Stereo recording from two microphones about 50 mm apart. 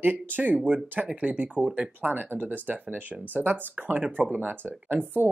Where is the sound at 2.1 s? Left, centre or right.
Right.